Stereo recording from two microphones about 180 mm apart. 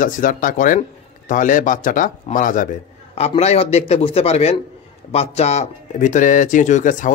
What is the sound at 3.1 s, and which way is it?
A man's voice, 35° left (ahead or behind).